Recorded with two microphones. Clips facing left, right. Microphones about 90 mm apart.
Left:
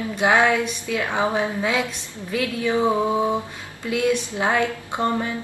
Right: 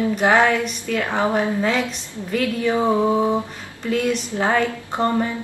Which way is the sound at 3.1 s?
10° left (ahead or behind).